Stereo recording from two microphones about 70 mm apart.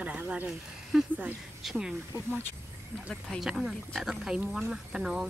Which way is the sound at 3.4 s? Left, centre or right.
Centre.